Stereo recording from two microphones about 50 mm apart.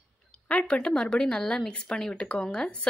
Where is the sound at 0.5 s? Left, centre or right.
Left.